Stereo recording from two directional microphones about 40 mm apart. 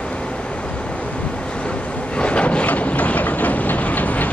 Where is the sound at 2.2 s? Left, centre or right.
Left.